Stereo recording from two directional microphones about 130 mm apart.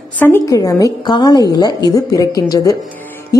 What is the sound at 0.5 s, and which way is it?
A woman's voice, 25° left (ahead or behind).